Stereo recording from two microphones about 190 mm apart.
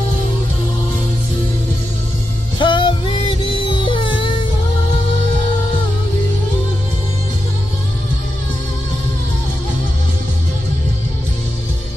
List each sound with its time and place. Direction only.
2.6 s music: 25° left (ahead or behind)